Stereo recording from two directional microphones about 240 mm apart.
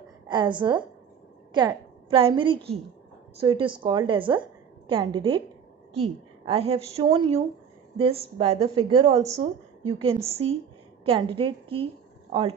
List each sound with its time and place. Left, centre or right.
0.3 s a woman's voice: centre